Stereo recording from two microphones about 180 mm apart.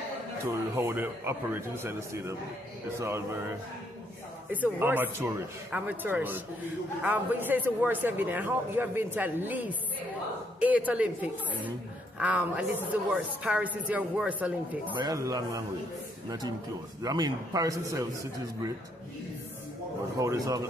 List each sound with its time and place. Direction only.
0.5 s a man's voice: 15° right (ahead or behind)
4.5 s a man's voice: 10° right (ahead or behind)
12.2 s a man's voice: 10° right (ahead or behind)
15.0 s a man's voice: 20° right (ahead or behind)
20.2 s a man's voice: 20° right (ahead or behind)